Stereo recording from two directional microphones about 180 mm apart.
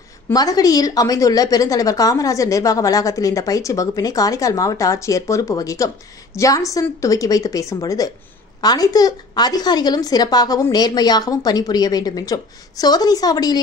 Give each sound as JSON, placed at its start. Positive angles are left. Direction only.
{"t": 0.3, "sound": "a woman's voice", "side_deg": 20}